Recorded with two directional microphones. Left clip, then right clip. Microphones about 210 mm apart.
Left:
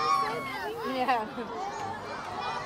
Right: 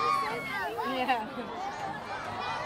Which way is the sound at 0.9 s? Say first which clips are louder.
Left 3 dB; 30° left (ahead or behind).